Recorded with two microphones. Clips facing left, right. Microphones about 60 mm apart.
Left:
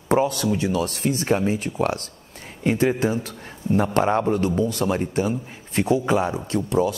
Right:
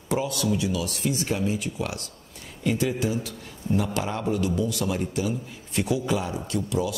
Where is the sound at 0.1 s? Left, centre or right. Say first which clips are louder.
Left 5 dB; left.